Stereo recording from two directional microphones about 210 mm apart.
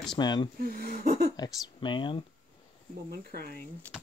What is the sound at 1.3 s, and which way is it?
Speech, 20° left (ahead or behind).